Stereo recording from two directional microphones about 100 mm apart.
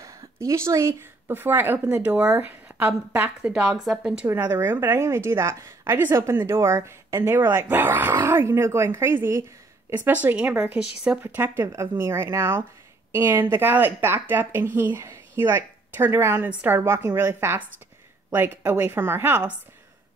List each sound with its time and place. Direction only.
0.0 s a woman's voice: 30° right (ahead or behind); by 4.3 s 10° right (ahead or behind)
4.3 s a woman's voice: 25° right (ahead or behind)